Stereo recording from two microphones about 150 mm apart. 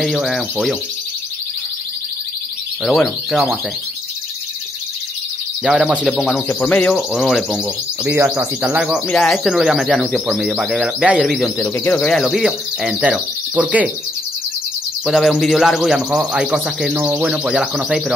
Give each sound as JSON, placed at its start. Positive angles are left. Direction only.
{"t": 0.0, "sound": "speech", "side_deg": 0}
{"t": 3.3, "sound": "speech", "side_deg": 0}
{"t": 5.6, "sound": "speech", "side_deg": -10}
{"t": 6.1, "sound": "speech", "side_deg": 5}
{"t": 15.0, "sound": "speech", "side_deg": 0}